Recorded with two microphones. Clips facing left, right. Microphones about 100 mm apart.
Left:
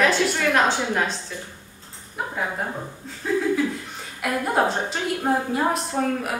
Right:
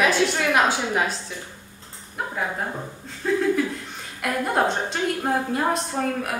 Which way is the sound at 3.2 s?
5° left (ahead or behind).